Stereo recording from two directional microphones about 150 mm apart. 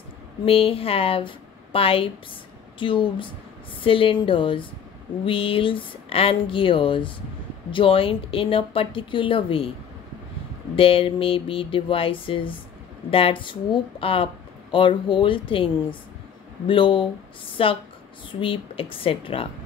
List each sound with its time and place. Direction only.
0.5 s speech: 40° left (ahead or behind)
10.8 s speech: 35° left (ahead or behind)